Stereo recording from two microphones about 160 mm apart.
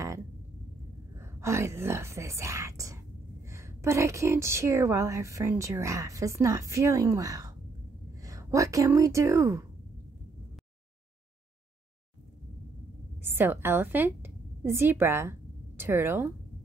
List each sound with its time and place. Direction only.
1.1 s a woman's voice: 15° right (ahead or behind)
13.2 s a woman's voice: 15° right (ahead or behind)